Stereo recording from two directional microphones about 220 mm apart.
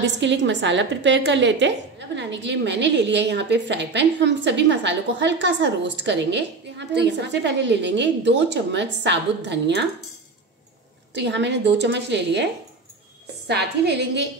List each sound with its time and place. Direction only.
0.0 s a woman's voice: 55° right (ahead or behind)
11.1 s a woman's voice: 50° right (ahead or behind)
13.5 s a woman's voice: 50° right (ahead or behind)